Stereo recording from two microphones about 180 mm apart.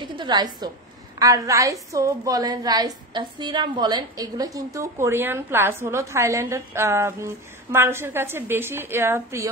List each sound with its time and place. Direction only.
0.0 s a woman's voice: 25° right (ahead or behind)